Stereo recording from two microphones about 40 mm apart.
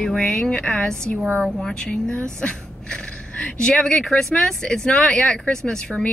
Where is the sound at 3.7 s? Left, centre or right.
Centre.